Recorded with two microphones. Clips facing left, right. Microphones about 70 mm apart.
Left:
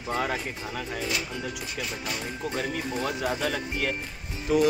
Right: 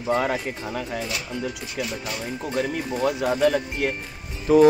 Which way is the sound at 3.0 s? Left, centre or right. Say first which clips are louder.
Right 10 dB; right.